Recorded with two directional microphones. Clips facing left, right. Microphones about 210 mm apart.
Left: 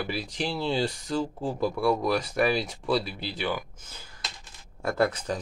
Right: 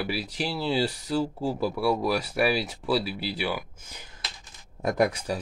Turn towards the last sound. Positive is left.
turn(degrees=-10)  # may be behind; listen again after turning